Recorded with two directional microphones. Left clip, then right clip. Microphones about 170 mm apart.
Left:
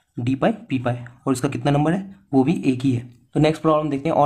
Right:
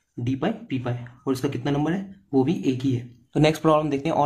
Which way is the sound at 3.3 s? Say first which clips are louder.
Left 1 dB; 10° left (ahead or behind).